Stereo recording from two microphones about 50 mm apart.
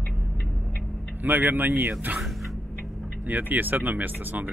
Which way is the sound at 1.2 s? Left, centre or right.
Right.